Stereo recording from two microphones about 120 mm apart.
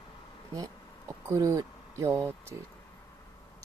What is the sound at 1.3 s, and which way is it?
Speech, 25° right (ahead or behind).